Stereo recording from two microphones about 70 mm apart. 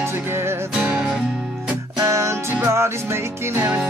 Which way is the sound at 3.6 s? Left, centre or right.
Right.